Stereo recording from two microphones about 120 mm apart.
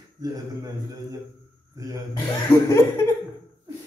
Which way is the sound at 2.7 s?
25° left (ahead or behind).